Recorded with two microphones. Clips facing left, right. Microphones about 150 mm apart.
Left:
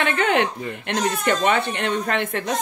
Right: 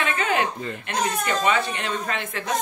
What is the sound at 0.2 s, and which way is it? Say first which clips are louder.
Chuckle: left 4 dB; 65° left (ahead or behind).